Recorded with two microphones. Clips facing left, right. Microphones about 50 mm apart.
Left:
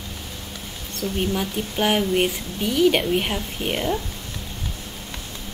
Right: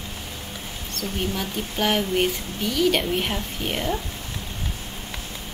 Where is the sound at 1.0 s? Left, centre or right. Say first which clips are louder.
Left 4 dB; centre.